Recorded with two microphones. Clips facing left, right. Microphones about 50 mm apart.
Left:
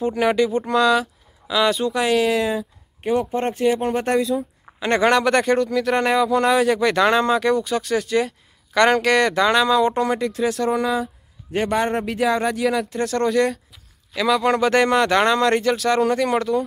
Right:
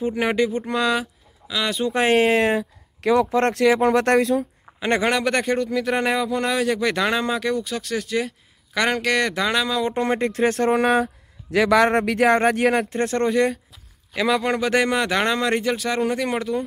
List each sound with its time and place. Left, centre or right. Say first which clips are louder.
0.0 s speech: left 2 dB; centre
0.5 s speech: left 4 dB; centre
1.5 s speech: left 5 dB; centre
2.0 s speech: right 4 dB; right
3.0 s speech: right 3 dB; right
4.7 s speech: left 3 dB; centre
10.0 s speech: right 1 dB; right
10.8 s speech: right 3 dB; right
11.5 s speech: right 4 dB; right
12.9 s speech: even; right
13.3 s speech: left 1 dB; centre